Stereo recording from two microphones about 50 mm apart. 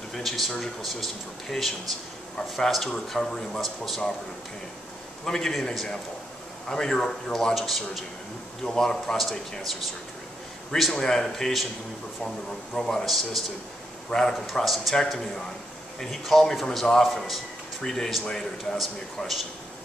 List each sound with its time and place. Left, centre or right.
0.1 s speech: centre
3.6 s speech: centre
5.2 s speech: centre
7.5 s speech: centre
8.6 s speech: centre
10.8 s speech: centre
12.7 s speech: centre
13.0 s speech: centre
18.8 s speech: centre